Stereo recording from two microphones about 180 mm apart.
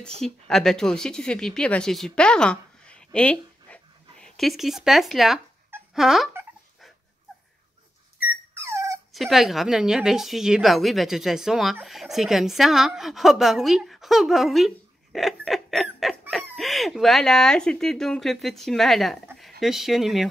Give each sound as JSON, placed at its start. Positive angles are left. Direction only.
{"t": 0.2, "sound": "a woman's voice", "side_deg": 0}
{"t": 8.5, "sound": "dog", "side_deg": -15}
{"t": 9.1, "sound": "a woman's voice", "side_deg": 0}